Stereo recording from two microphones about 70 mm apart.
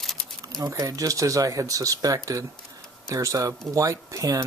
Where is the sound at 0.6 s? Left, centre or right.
Right.